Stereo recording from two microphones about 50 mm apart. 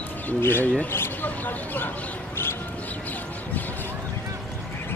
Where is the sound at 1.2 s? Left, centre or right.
Left.